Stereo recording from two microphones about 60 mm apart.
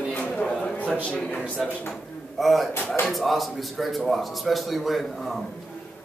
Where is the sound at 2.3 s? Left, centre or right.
Centre.